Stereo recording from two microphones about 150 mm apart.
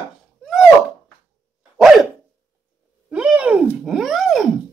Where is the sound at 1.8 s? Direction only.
5° right (ahead or behind).